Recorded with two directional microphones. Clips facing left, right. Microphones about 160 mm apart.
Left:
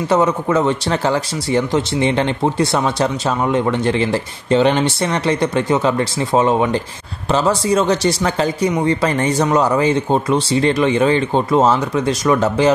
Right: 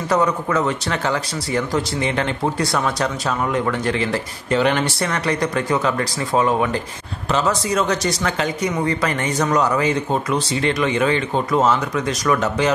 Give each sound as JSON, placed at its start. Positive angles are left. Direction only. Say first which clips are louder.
{"t": 0.1, "sound": "speech", "louder": "left 3 dB", "side_deg": 25}